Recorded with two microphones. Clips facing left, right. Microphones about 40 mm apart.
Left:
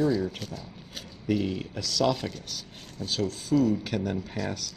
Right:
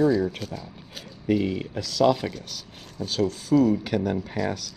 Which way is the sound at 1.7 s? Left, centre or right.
Right.